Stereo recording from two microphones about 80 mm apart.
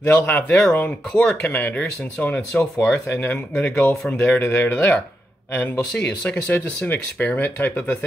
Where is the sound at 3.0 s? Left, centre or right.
Left.